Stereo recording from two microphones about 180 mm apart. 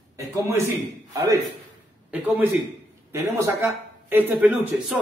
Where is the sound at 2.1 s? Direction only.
10° right (ahead or behind).